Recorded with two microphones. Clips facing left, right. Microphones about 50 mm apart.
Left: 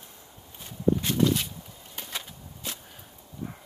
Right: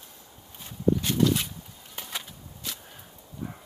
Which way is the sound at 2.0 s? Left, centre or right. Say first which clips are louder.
Even; centre.